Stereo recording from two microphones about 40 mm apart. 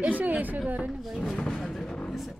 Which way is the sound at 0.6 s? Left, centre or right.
Right.